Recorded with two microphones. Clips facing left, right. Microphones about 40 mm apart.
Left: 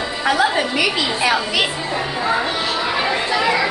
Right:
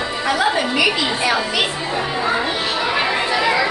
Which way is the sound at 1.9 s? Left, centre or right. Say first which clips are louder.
Even; centre.